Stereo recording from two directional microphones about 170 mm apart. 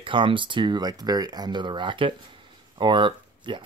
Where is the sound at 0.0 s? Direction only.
30° right (ahead or behind).